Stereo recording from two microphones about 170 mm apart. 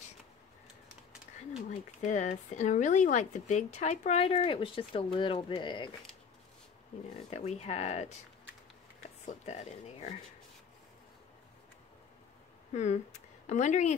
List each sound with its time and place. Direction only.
2.0 s speech: 45° left (ahead or behind)
4.3 s speech: 30° left (ahead or behind)
7.2 s speech: 40° left (ahead or behind)
9.2 s speech: 45° left (ahead or behind)
12.7 s speech: 45° left (ahead or behind)